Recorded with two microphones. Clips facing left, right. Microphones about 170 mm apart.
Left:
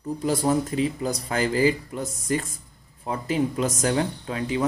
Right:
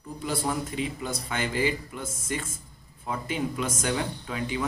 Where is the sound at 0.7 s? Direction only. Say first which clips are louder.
Left 6 dB; 40° left (ahead or behind).